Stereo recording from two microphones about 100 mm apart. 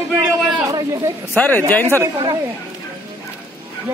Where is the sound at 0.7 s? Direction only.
35° right (ahead or behind).